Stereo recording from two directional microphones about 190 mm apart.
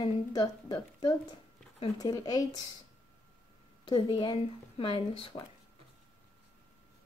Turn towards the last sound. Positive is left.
turn(degrees=25)  # may be behind; listen again after turning